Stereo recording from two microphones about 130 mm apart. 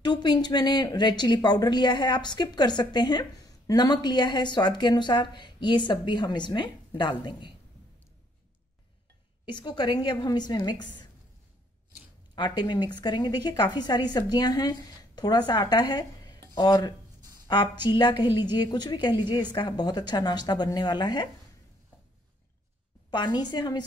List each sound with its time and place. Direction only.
0.0 s speech: 35° left (ahead or behind)
9.5 s speech: 35° left (ahead or behind)
12.4 s speech: 35° left (ahead or behind)
23.1 s speech: 35° left (ahead or behind)